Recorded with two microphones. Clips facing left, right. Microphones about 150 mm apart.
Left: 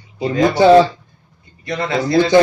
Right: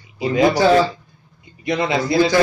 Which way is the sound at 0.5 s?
25° left (ahead or behind).